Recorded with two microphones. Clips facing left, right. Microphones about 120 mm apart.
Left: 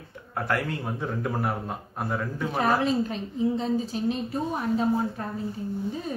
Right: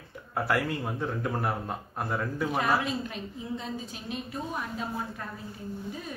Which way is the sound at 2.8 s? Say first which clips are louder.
Left 7 dB; 35° left (ahead or behind).